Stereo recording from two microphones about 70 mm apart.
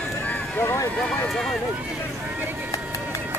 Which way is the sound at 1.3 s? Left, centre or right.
Centre.